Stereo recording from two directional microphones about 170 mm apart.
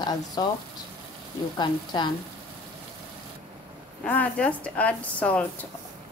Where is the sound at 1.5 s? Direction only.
25° left (ahead or behind).